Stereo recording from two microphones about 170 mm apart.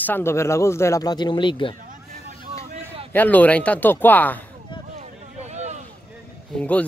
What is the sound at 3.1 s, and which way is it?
Speech, 10° left (ahead or behind).